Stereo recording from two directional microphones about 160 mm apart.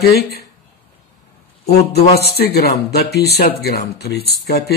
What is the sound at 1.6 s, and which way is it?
Speech, 85° left.